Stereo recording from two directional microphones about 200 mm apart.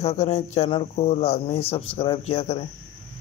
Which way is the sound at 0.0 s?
30° left (ahead or behind).